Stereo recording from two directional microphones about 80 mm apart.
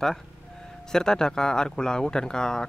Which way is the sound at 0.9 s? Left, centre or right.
Centre.